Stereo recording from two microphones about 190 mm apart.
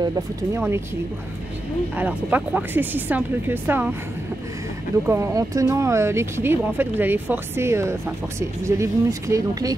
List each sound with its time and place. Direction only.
0.0 s speech: 15° right (ahead or behind)
2.0 s speech: 10° right (ahead or behind)
5.0 s speech: 15° right (ahead or behind)